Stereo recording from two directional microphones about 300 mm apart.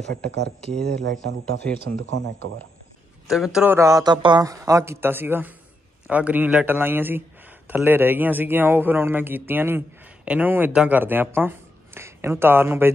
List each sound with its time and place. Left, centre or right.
0.1 s speech: right
0.6 s speech: centre
3.3 s a man's voice: centre